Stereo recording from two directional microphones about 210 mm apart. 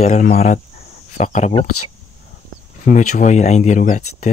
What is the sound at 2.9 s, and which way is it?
Speech, 35° left (ahead or behind).